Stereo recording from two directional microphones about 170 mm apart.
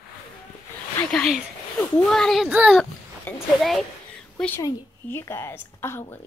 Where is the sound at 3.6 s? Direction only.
Centre (ahead or behind).